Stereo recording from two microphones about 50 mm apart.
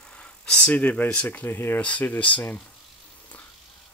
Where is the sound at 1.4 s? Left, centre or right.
Left.